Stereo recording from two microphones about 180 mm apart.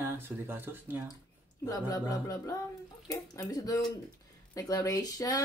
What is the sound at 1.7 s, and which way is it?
Speech, 20° left (ahead or behind).